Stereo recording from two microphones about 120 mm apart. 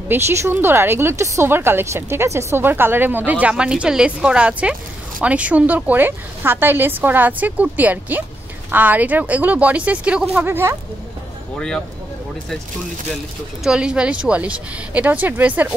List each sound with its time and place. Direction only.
0.1 s speech: 20° right (ahead or behind)
11.5 s speech: 5° left (ahead or behind)
13.7 s speech: 5° right (ahead or behind)